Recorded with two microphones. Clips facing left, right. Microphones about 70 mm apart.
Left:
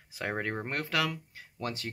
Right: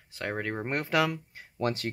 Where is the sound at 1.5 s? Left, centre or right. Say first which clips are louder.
Right 7 dB; right.